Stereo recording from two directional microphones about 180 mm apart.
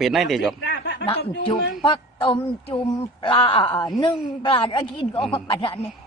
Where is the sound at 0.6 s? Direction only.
75° left (ahead or behind).